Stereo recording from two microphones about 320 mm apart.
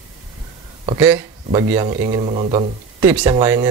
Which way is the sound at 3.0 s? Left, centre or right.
Centre.